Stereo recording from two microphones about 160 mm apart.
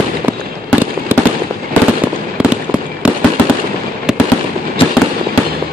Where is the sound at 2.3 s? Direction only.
5° right (ahead or behind).